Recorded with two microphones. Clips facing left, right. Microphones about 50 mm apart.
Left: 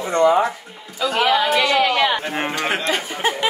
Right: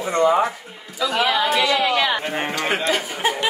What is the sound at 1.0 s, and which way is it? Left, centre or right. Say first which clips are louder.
A man's voice: left 2 dB; left.